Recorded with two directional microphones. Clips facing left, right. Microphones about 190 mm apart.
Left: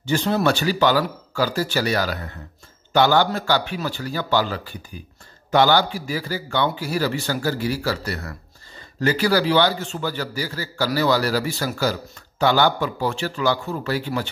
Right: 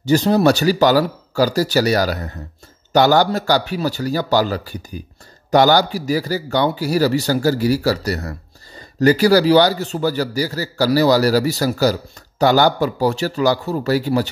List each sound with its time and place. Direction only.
0.0 s speech: 40° right (ahead or behind)